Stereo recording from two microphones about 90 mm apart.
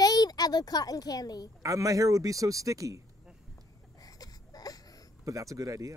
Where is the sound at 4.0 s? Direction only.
45° left (ahead or behind).